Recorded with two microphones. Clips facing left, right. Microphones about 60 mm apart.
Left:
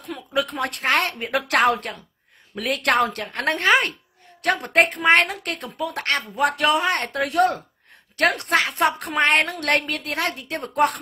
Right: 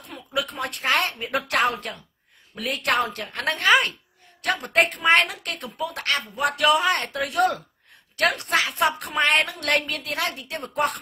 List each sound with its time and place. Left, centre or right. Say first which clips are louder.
0.3 s a woman's voice: left 3 dB; left
3.5 s a man's voice: even; left
4.4 s a woman's voice: left 3 dB; left
6.4 s a man's voice: even; left
7.1 s a woman's voice: left 2 dB; left